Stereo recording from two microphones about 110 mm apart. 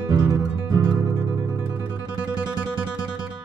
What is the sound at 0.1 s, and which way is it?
Music, 40° right (ahead or behind).